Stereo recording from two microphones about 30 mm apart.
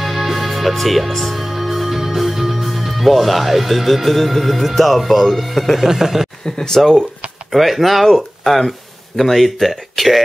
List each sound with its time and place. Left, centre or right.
0.0 s speech: centre
5.8 s a sound: centre
6.4 s speech: left
7.5 s speech: centre
8.1 s speech: centre